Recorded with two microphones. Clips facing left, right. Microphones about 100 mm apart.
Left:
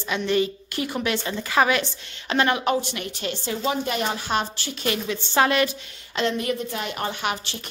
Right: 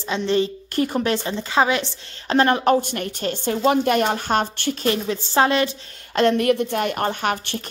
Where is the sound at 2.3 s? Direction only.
35° right (ahead or behind).